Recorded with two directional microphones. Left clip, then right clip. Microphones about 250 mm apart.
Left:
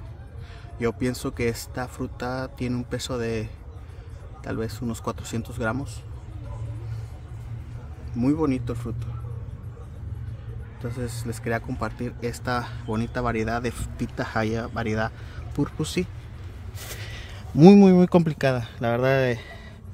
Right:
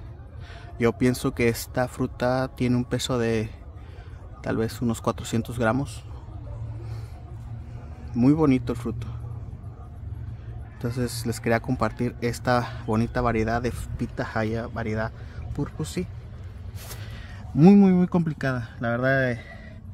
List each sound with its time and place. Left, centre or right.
0.7 s speech: right
8.1 s speech: right
10.8 s speech: right; by 19.6 s centre